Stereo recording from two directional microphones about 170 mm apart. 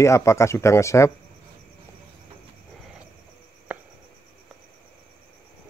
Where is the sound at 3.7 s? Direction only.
10° right (ahead or behind).